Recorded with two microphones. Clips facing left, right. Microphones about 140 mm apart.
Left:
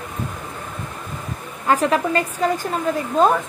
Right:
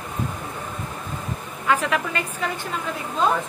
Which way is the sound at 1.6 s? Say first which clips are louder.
Left 4 dB; 40° left (ahead or behind).